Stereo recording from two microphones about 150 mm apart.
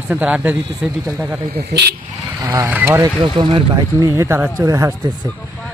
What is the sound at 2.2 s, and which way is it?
Speech, 15° right (ahead or behind).